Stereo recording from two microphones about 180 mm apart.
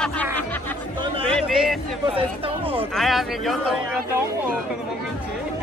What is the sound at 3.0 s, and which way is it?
Speech, centre (ahead or behind).